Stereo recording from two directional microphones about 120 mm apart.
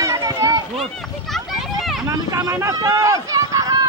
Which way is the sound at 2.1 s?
30° right (ahead or behind).